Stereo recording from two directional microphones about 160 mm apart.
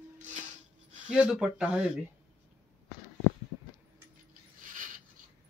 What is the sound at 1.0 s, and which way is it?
Speech, 5° right (ahead or behind).